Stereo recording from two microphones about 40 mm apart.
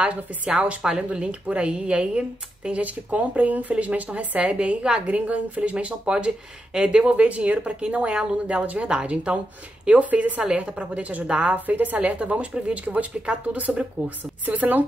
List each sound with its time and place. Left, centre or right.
0.5 s speech: right
0.8 s speech: centre
1.2 s speech: right
2.7 s speech: right
6.1 s speech: right
11.6 s speech: right
12.0 s speech: right